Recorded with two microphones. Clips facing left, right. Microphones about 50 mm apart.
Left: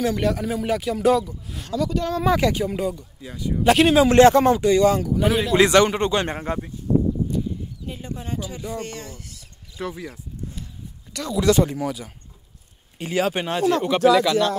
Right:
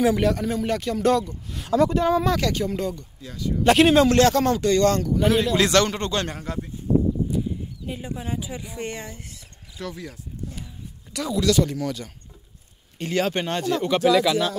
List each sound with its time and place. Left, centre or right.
0.2 s a man's voice: centre
1.7 s speech: right
2.2 s a man's voice: centre
3.6 s a man's voice: centre
4.1 s a man's voice: left; by 5.6 s centre
5.6 s a man's voice: centre
6.3 s speech: left
7.2 s speech: centre; by 9.4 s right
9.8 s a man's voice: centre
11.4 s a man's voice: left; by 14.5 s centre